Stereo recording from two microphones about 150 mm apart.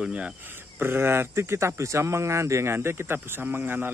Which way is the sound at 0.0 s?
10° right (ahead or behind).